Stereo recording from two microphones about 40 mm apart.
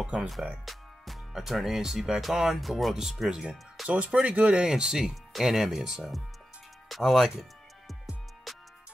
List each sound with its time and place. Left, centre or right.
0.1 s speech: centre
0.7 s music: centre
1.3 s speech: centre
3.9 s speech: right
4.6 s speech: centre
6.9 s speech: centre
8.5 s music: centre